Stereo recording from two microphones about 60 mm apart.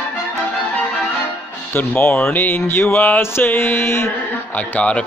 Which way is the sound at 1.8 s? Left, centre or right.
Left.